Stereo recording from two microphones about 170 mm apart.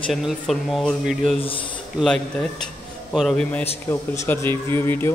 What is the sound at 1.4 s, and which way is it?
Speech, 30° left (ahead or behind).